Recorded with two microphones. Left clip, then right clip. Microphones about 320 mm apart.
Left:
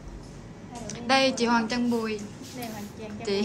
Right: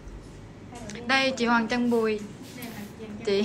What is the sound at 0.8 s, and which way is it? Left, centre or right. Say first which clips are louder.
A woman's voice: left 1 dB; centre.